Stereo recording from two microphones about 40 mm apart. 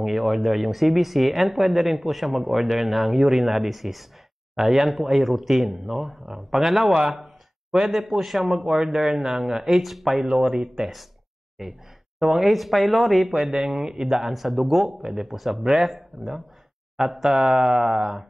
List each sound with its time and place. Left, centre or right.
0.0 s speech: centre
8.7 s speech: centre
10.4 s speech: centre
10.8 s speech: centre
12.2 s a woman's voice: centre
12.4 s speech: centre